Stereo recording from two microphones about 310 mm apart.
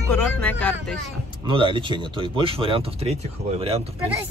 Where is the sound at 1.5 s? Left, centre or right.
Centre.